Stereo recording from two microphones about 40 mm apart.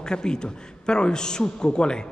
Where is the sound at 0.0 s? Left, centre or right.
Centre.